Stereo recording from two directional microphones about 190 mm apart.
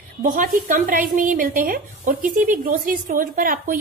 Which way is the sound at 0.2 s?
45° right (ahead or behind).